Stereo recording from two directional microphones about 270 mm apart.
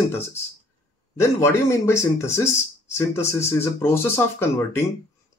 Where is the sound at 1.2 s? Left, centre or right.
Centre.